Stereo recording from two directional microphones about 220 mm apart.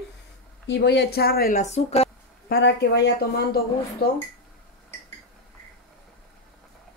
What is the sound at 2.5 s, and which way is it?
Speech, 50° left (ahead or behind).